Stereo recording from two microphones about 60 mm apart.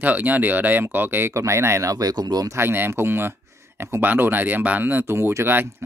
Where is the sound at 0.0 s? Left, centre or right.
Right.